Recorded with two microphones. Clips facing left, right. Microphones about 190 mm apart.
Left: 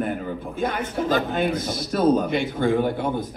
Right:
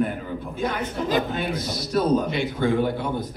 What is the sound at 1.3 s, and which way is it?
A man's voice, 50° left (ahead or behind).